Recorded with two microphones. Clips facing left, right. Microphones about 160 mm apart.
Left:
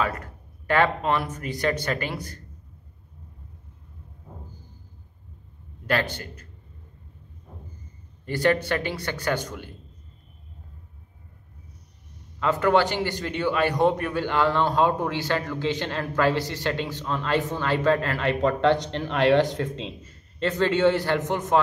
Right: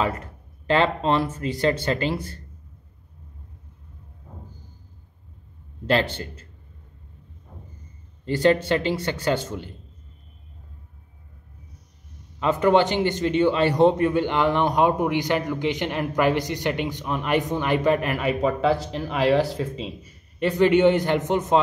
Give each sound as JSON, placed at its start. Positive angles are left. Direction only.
{"t": 0.0, "sound": "speech", "side_deg": -20}
{"t": 5.9, "sound": "speech", "side_deg": -25}
{"t": 8.3, "sound": "speech", "side_deg": -20}
{"t": 12.4, "sound": "a man's voice", "side_deg": -20}
{"t": 18.3, "sound": "a man's voice", "side_deg": 0}